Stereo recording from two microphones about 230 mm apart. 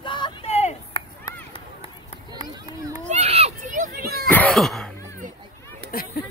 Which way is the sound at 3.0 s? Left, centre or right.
Right.